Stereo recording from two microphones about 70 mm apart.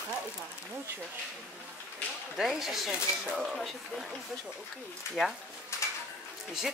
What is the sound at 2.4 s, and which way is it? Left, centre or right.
Speech, centre.